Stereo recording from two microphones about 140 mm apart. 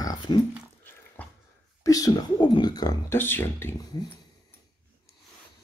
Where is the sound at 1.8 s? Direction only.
25° left (ahead or behind).